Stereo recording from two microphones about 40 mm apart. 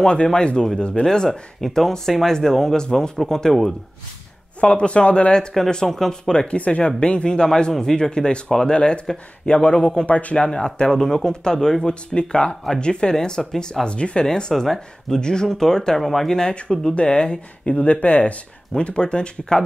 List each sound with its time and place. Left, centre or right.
0.0 s speech: left
1.0 s speech: centre
4.6 s speech: left
5.9 s speech: centre
6.3 s speech: left
9.8 s speech: centre
10.0 s speech: left
10.9 s speech: centre
13.8 s speech: left
14.2 s speech: centre
16.0 s speech: centre
16.3 s speech: centre; by 18.4 s left
18.8 s speech: left